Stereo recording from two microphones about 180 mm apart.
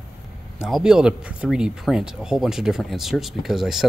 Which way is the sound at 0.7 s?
5° right (ahead or behind).